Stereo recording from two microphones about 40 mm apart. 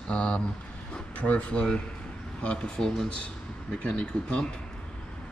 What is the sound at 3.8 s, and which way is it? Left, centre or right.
Speech, left.